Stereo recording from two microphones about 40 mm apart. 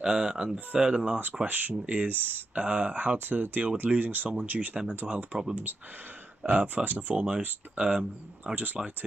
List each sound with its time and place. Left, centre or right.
0.0 s speech: centre
1.5 s speech: right
2.6 s speech: right
3.3 s speech: right
4.7 s speech: right
6.4 s speech: right
7.2 s speech: right